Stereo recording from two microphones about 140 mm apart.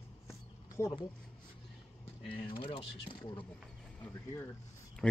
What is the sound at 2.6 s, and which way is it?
Speech, 40° left (ahead or behind).